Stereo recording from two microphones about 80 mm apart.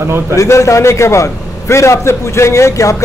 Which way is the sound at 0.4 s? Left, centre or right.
Left.